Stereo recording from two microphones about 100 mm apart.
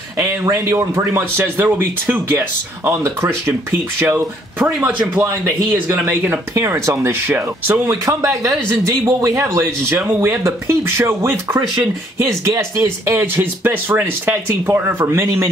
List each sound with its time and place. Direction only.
0.2 s speech: 25° right (ahead or behind)
4.7 s a man's voice: 10° right (ahead or behind)
5.2 s speech: 25° right (ahead or behind)
7.9 s speech: 35° right (ahead or behind)